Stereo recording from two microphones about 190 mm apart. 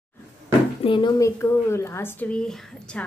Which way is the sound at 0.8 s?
25° left (ahead or behind).